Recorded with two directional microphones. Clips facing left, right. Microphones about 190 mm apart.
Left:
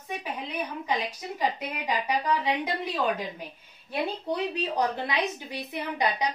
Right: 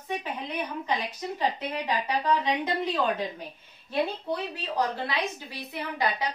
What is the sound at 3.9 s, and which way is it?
A woman's voice, 20° left (ahead or behind).